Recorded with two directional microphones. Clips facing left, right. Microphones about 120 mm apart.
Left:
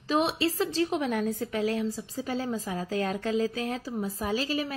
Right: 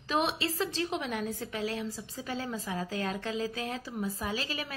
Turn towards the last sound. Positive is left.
turn(degrees=40)  # may be behind; listen again after turning